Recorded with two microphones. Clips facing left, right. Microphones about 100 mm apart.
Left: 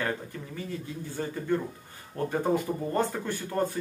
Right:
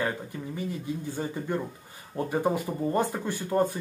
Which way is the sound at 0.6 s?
15° right (ahead or behind).